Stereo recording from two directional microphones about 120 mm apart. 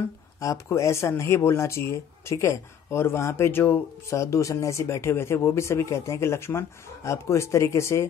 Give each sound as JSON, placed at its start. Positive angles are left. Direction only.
{"t": 0.4, "sound": "speech", "side_deg": 25}